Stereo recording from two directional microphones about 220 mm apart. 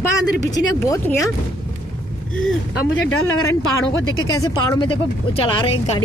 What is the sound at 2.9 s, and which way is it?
A woman's voice, 70° left (ahead or behind).